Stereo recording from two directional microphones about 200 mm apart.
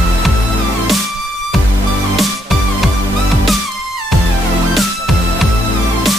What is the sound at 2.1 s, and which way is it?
Music, centre (ahead or behind).